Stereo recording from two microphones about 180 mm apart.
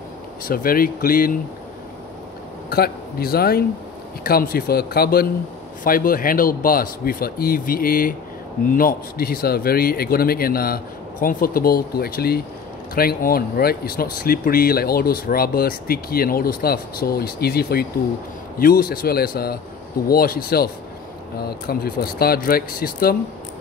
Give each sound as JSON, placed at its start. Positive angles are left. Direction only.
{"t": 0.5, "sound": "speech", "side_deg": 50}
{"t": 2.7, "sound": "speech", "side_deg": 60}